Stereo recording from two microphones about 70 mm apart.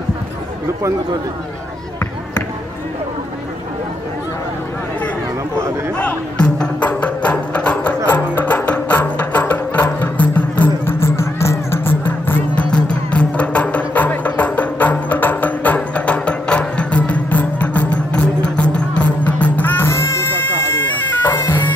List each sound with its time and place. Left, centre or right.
5.9 s music: centre
11.0 s music: left
12.0 s music: left
12.7 s music: centre
19.9 s music: left
20.9 s bagpipes: left